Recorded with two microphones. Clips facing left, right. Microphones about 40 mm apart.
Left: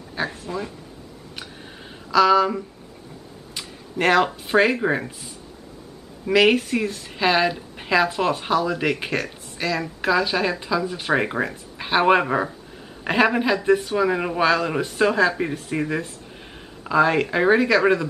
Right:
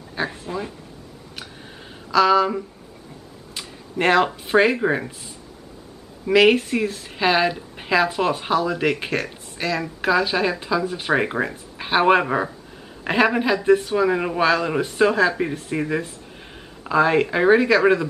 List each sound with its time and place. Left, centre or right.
0.1 s speech: centre
2.0 s speech: centre
6.2 s a woman's voice: centre